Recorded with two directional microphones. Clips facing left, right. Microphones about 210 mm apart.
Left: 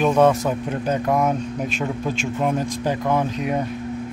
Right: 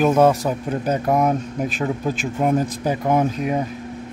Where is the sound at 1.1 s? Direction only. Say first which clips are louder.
Right 3 dB; 15° right (ahead or behind).